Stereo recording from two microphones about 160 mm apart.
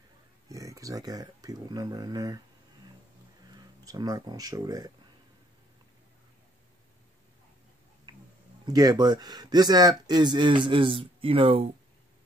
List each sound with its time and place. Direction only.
0.5 s speech: 20° right (ahead or behind)
8.1 s tick-tock: 25° right (ahead or behind)
8.6 s speech: 25° right (ahead or behind)